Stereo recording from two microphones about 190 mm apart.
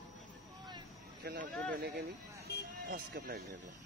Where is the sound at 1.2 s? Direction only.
55° right (ahead or behind).